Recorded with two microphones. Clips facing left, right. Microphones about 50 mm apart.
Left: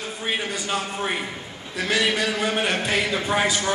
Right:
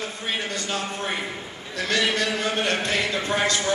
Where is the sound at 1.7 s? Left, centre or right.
Centre.